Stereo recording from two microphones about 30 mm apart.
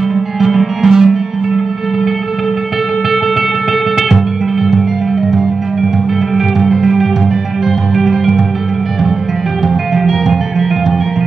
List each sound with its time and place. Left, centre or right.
0.8 s music: centre
6.3 s music: centre
7.9 s music: centre